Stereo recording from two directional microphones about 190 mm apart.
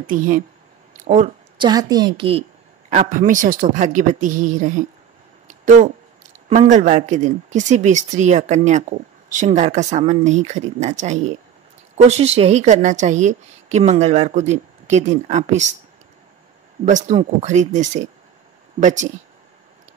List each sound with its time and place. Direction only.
0.0 s a woman's voice: 45° right (ahead or behind)
1.6 s a woman's voice: 20° right (ahead or behind)
2.9 s a woman's voice: 45° right (ahead or behind)
5.5 s a sound: 40° right (ahead or behind)
6.5 s a woman's voice: 40° right (ahead or behind)
16.8 s a woman's voice: 40° right (ahead or behind)